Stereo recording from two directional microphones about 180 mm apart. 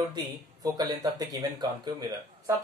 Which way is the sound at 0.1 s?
20° right (ahead or behind).